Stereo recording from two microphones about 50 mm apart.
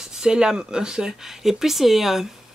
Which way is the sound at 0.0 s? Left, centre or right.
Centre.